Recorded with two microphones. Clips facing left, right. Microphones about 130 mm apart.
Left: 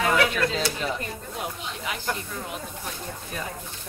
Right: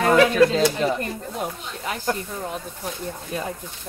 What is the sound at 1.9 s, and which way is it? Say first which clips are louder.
Speech: right 6 dB; 40° right (ahead or behind).